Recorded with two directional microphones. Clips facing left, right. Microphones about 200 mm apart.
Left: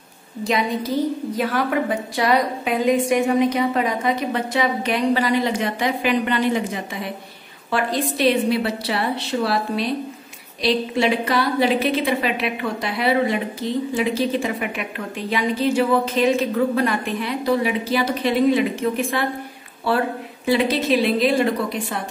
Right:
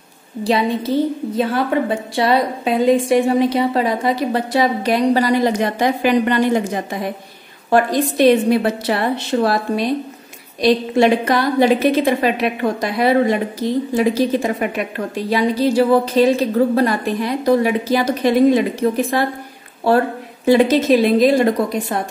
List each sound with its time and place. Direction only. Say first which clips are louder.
0.4 s a woman's voice: right 4 dB; 30° right (ahead or behind)
20.4 s a woman's voice: right 6 dB; 45° right (ahead or behind)